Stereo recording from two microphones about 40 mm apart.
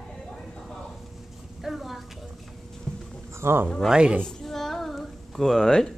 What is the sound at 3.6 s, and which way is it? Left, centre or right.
Speech, centre.